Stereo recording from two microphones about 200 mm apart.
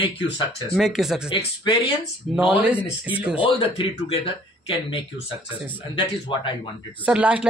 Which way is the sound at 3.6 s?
30° left (ahead or behind).